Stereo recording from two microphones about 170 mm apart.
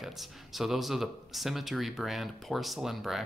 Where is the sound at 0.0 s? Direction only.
Centre (ahead or behind).